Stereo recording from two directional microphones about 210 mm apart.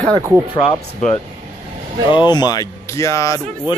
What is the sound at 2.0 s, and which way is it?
Speech, 20° left (ahead or behind).